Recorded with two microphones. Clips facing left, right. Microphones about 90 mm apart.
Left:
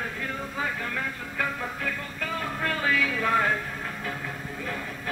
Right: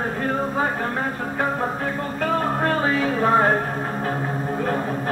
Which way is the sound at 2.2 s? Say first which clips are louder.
Right 9 dB; 40° right (ahead or behind).